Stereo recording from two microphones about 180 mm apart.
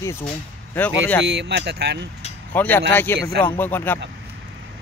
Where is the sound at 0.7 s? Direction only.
10° left (ahead or behind).